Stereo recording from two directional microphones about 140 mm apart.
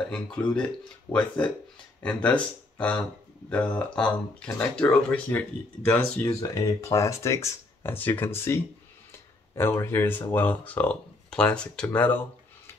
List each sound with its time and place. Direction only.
0.1 s speech: 5° left (ahead or behind)
6.2 s speech: 25° left (ahead or behind)
9.6 s speech: 15° left (ahead or behind)